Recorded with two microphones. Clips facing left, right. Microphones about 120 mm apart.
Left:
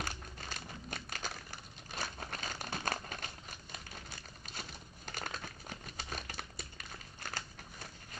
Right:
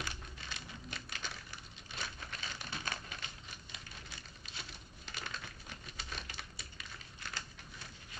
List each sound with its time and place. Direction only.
0.0 s crumpling: 45° left (ahead or behind)